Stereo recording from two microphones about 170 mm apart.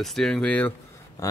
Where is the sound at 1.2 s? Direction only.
20° left (ahead or behind).